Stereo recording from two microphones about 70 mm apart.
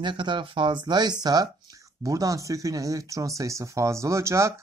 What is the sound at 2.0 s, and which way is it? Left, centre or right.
Speech, right.